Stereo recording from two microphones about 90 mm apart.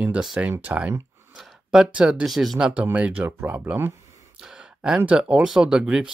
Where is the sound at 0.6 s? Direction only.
20° right (ahead or behind).